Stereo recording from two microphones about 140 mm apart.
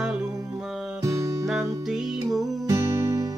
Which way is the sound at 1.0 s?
25° right (ahead or behind).